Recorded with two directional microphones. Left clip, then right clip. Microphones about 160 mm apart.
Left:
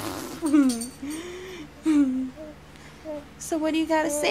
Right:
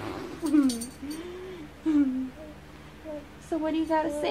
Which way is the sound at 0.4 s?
40° left (ahead or behind).